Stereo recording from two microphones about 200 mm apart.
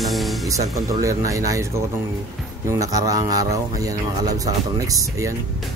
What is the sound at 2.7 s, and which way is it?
Speech, 15° right (ahead or behind).